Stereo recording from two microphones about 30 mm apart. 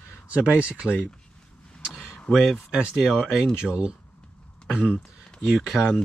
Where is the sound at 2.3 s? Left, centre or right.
Left.